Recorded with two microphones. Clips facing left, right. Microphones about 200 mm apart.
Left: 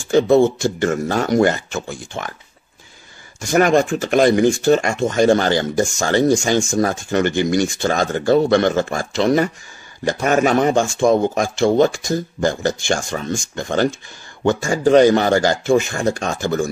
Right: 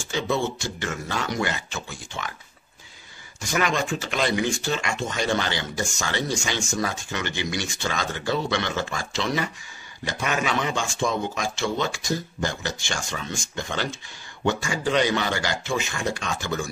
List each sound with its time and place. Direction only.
0.1 s speech: 50° left (ahead or behind)
3.3 s speech: 50° left (ahead or behind)